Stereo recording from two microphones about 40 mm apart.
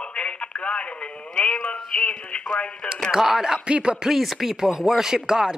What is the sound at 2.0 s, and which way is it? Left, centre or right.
Speech, left.